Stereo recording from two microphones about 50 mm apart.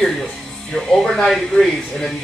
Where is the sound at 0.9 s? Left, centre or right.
Centre.